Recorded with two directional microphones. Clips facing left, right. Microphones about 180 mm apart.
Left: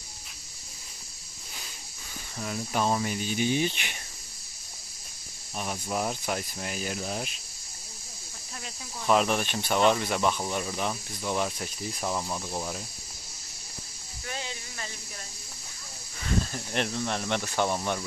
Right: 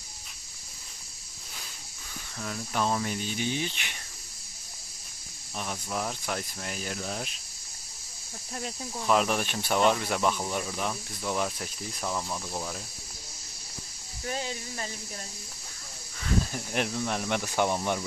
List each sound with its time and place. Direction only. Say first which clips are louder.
2.3 s speech: left 2 dB; 15° left (ahead or behind)
5.6 s speech: left 2 dB; 15° left (ahead or behind)
9.0 s speech: left 1 dB; centre (ahead or behind)
14.2 s speech: right 4 dB; 40° right (ahead or behind)
16.5 s speech: even; 5° right (ahead or behind)